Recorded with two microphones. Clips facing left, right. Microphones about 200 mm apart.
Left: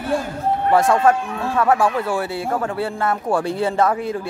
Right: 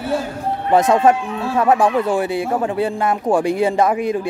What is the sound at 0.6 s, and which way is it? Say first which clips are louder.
Speech: right 2 dB; 20° right (ahead or behind).